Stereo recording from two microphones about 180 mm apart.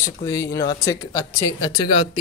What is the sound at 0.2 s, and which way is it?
Speech, 15° left (ahead or behind).